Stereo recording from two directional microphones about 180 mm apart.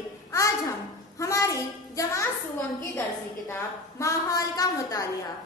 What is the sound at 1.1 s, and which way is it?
A child's voice, 15° left (ahead or behind).